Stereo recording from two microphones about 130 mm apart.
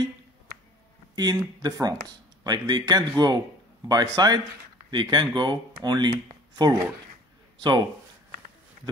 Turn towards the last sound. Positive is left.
turn(degrees=-30)  # may be behind; listen again after turning